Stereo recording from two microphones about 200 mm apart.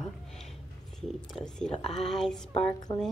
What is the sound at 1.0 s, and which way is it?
A woman's voice, 5° left (ahead or behind).